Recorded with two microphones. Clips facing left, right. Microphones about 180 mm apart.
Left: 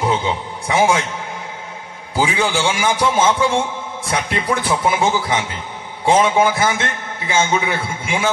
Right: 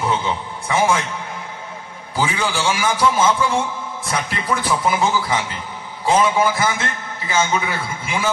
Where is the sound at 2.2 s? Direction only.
25° left (ahead or behind).